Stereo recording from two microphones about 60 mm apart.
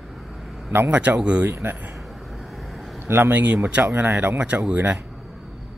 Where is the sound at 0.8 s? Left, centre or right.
Right.